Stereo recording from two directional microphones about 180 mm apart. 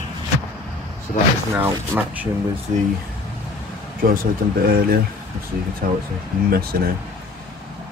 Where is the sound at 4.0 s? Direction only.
55° right (ahead or behind).